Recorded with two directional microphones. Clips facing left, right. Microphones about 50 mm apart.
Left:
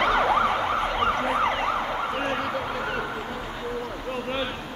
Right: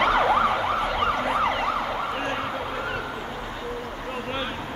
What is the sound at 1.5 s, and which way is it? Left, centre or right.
Emergency vehicle, left.